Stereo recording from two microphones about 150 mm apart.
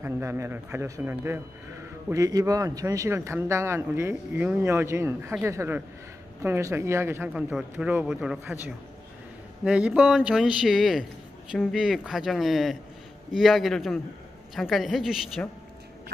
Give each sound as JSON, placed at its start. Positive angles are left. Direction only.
{"t": 0.0, "sound": "a man's voice", "side_deg": -15}
{"t": 7.3, "sound": "a man's voice", "side_deg": -5}
{"t": 9.7, "sound": "a man's voice", "side_deg": -5}